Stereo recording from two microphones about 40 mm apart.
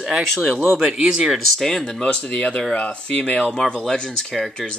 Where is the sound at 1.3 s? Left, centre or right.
Centre.